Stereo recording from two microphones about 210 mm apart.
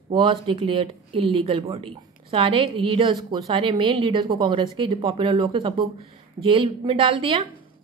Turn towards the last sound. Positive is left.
turn(degrees=-25)  # may be behind; listen again after turning